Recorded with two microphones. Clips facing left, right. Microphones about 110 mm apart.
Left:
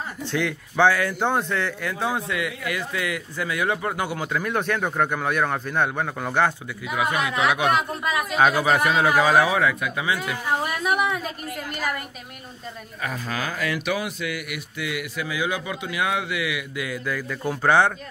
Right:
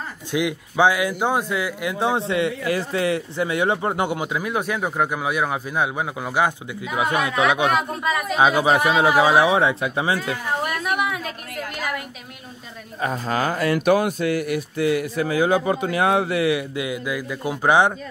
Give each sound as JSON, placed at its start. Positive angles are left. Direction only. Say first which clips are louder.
{"t": 0.3, "sound": "speech", "louder": "right 4 dB", "side_deg": -15}
{"t": 7.0, "sound": "speech", "louder": "right 2 dB", "side_deg": -30}
{"t": 7.7, "sound": "a woman's voice", "louder": "right 1 dB", "side_deg": 0}
{"t": 8.4, "sound": "speech", "louder": "right 2 dB", "side_deg": -10}
{"t": 10.6, "sound": "a woman's voice", "louder": "even", "side_deg": 0}
{"t": 13.0, "sound": "speech", "louder": "right 6 dB", "side_deg": -35}
{"t": 16.8, "sound": "speech", "louder": "right 2 dB", "side_deg": -15}